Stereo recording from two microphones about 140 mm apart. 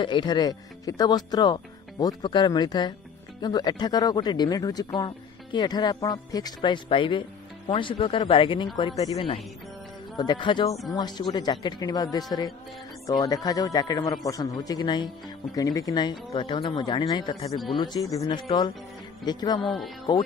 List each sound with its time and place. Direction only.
0.0 s a man's voice: 35° left (ahead or behind)
19.6 s speech: centre (ahead or behind)